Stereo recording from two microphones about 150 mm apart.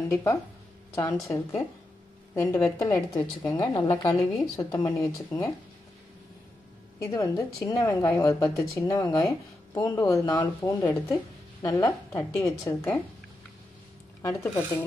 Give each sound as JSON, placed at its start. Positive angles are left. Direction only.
{"t": 0.1, "sound": "a woman's voice", "side_deg": 15}
{"t": 7.0, "sound": "a woman's voice", "side_deg": 20}
{"t": 14.2, "sound": "speech", "side_deg": 15}